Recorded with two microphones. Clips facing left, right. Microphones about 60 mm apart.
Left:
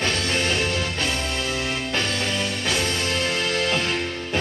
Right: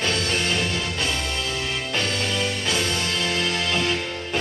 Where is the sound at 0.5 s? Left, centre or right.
Left.